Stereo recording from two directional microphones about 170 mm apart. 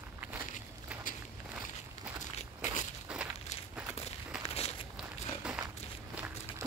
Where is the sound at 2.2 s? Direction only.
45° left (ahead or behind).